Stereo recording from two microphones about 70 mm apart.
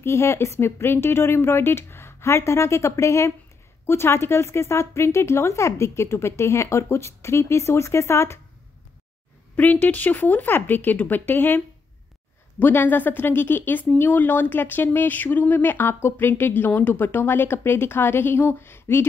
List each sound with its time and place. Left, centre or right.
0.0 s speech: left
9.6 s speech: left